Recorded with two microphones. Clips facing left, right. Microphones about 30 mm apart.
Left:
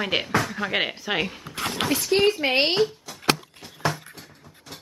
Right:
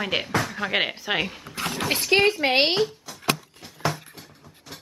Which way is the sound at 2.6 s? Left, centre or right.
Centre.